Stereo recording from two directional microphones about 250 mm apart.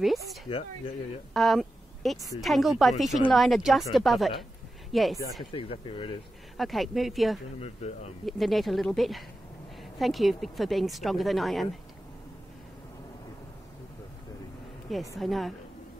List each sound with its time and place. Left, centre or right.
0.0 s a sound: centre
1.3 s a woman's voice: centre
5.4 s speech: left
6.5 s a woman's voice: centre
7.6 s speech: left
8.3 s a woman's voice: centre
15.1 s a woman's voice: centre